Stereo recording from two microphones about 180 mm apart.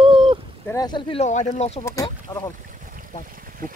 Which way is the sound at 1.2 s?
40° left (ahead or behind).